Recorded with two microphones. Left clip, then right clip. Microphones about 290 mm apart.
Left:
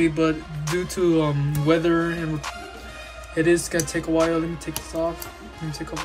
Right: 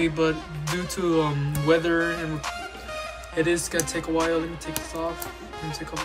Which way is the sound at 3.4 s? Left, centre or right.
Centre.